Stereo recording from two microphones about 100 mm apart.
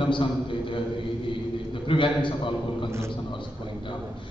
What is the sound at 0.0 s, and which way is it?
Speech, 55° left (ahead or behind).